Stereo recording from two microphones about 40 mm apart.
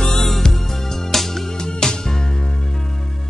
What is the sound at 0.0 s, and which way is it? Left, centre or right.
Music, centre.